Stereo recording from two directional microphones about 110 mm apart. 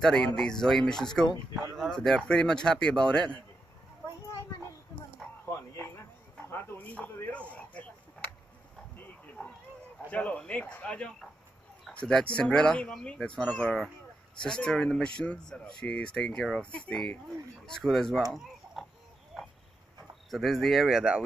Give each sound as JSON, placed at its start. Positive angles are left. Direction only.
{"t": 0.0, "sound": "speech", "side_deg": 5}
{"t": 6.5, "sound": "a sound", "side_deg": 15}
{"t": 10.1, "sound": "speech", "side_deg": 10}
{"t": 18.3, "sound": "chicken", "side_deg": 0}
{"t": 20.2, "sound": "speech", "side_deg": 0}